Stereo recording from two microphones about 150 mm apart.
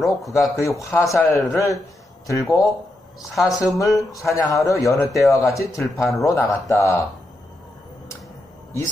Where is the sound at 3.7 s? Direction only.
20° left (ahead or behind).